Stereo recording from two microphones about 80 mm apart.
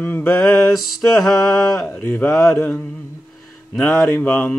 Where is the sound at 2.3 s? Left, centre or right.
Centre.